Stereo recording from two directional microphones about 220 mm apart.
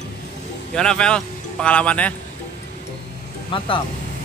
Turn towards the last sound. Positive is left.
turn(degrees=20)  # may be behind; listen again after turning